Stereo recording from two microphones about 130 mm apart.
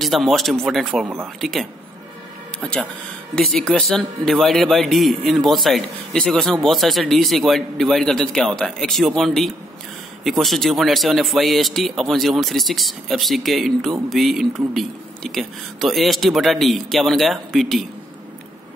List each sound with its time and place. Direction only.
0.0 s speech: centre (ahead or behind)
1.0 s speech: 20° right (ahead or behind)
1.4 s speech: centre (ahead or behind)